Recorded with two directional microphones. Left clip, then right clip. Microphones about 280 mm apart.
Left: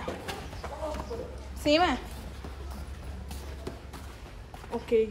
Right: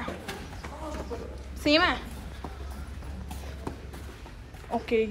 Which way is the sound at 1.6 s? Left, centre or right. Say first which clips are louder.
Right 1 dB; centre.